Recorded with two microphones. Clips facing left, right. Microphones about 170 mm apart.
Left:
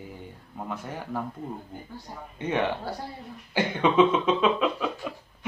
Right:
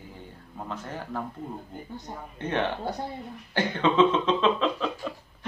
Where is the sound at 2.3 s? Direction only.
10° left (ahead or behind).